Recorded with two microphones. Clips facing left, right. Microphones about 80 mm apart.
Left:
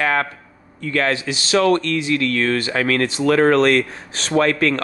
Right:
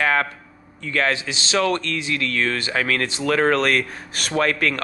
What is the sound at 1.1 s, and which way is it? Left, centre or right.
Speech, right.